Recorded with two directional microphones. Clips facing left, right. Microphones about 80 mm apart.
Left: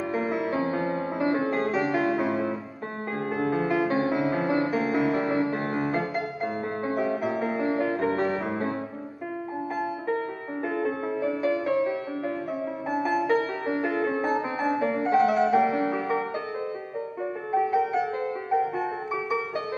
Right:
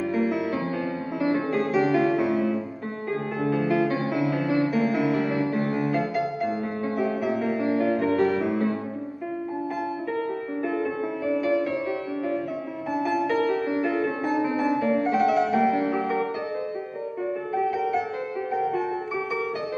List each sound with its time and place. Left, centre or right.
0.1 s music: left
10.0 s music: left
17.5 s music: left